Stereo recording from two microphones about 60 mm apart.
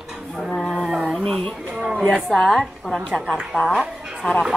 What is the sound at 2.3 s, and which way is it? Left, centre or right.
Speech, centre.